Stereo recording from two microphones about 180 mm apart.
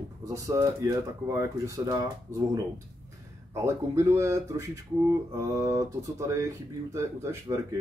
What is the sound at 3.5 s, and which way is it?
Speech, 15° right (ahead or behind).